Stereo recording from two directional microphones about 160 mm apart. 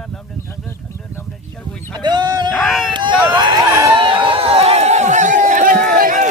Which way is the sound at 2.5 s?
Centre (ahead or behind).